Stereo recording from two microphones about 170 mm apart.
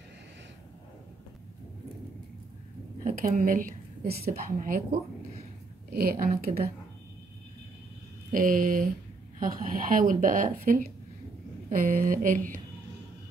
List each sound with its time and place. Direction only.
3.0 s a woman's voice: 55° right (ahead or behind)
5.9 s a woman's voice: 60° right (ahead or behind)
8.3 s speech: 55° right (ahead or behind)